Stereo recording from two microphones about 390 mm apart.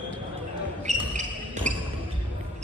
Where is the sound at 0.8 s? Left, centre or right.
Centre.